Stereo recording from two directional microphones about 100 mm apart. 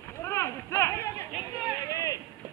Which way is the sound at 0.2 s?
25° left (ahead or behind).